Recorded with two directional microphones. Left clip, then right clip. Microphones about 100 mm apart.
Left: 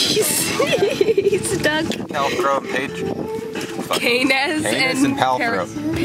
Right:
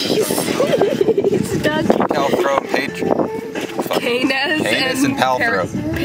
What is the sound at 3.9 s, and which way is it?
Speech, 25° left (ahead or behind).